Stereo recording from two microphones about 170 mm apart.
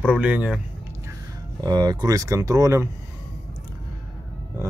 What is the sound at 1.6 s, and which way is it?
Speech, 25° right (ahead or behind).